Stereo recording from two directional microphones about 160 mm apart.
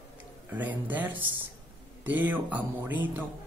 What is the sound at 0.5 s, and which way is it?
Speech, 10° right (ahead or behind).